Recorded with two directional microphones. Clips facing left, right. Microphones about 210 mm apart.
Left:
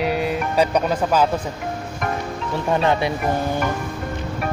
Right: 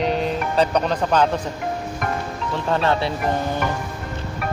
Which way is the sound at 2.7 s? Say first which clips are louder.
Left 1 dB; 15° left (ahead or behind).